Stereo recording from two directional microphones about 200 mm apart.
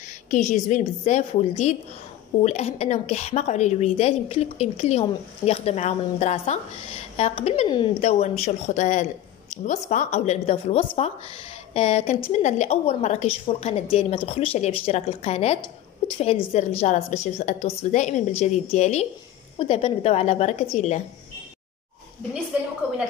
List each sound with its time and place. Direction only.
0.3 s a woman's voice: 40° left (ahead or behind)